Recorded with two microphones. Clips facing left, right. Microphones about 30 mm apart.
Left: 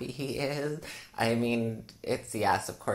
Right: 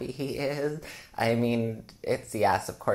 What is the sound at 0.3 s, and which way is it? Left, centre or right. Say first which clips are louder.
Speech: right 2 dB; centre.